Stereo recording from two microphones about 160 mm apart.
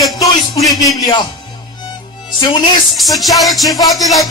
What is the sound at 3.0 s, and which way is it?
Music, centre (ahead or behind).